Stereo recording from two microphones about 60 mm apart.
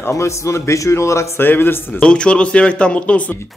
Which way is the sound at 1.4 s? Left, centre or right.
Left.